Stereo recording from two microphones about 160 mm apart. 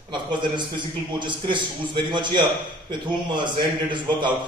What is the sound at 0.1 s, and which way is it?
A man's voice, 30° right (ahead or behind).